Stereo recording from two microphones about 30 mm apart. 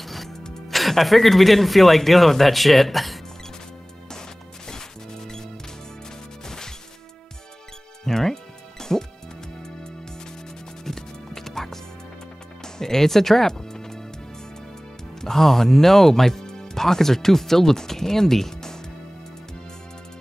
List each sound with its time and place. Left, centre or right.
0.0 s music: centre
0.7 s speech: centre
4.6 s music: centre
8.0 s music: centre
10.8 s music: centre
12.6 s speech: centre
13.6 s music: centre
15.1 s speech: centre